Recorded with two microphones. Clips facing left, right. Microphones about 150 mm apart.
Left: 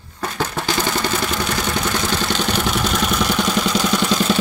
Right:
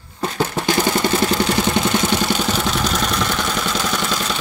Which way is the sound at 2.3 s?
Centre (ahead or behind).